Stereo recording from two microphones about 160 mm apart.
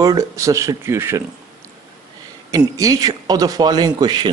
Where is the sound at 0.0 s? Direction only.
20° right (ahead or behind).